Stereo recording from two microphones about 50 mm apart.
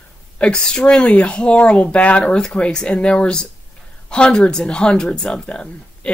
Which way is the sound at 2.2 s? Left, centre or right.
Centre.